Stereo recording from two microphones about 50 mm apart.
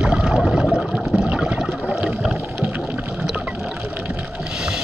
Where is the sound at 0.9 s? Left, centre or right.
Centre.